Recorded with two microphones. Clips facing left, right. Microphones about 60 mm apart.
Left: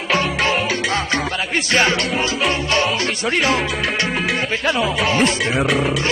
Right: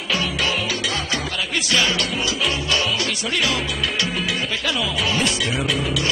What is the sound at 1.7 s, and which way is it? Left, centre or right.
Speech, left.